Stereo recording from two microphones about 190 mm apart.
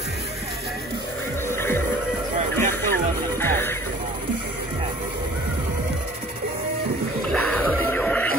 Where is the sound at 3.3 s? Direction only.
10° left (ahead or behind).